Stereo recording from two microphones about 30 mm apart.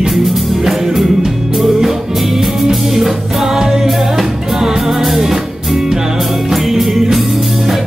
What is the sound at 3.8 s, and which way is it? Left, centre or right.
Music, centre.